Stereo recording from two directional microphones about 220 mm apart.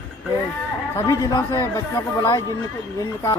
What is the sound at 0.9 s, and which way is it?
Speech, 15° left (ahead or behind).